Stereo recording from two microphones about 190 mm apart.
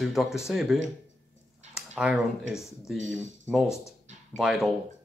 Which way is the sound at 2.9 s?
80° right.